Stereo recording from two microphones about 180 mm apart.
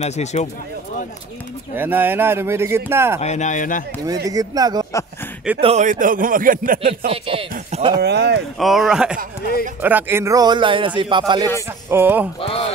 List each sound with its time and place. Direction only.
0.0 s speech: 40° left (ahead or behind)
1.8 s speech: 10° right (ahead or behind)
3.2 s speech: 40° left (ahead or behind)
4.3 s a man's voice: 20° right (ahead or behind)
5.6 s speech: 40° right (ahead or behind)
7.1 s speech: 30° right (ahead or behind)
8.0 s speech: 65° right (ahead or behind)
8.5 s a man's voice: centre (ahead or behind); by 11.5 s 25° right (ahead or behind)
11.9 s speech: 10° right (ahead or behind)
12.4 s speech: 30° left (ahead or behind)